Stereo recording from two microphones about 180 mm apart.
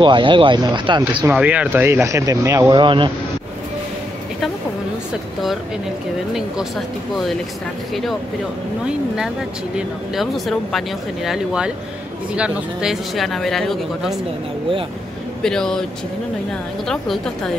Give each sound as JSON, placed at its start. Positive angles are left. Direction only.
{"t": 0.0, "sound": "speech", "side_deg": -25}
{"t": 1.2, "sound": "speech", "side_deg": -10}
{"t": 7.9, "sound": "speech", "side_deg": 0}
{"t": 9.8, "sound": "speech", "side_deg": 0}
{"t": 15.4, "sound": "speech", "side_deg": 5}
{"t": 16.8, "sound": "speech", "side_deg": 5}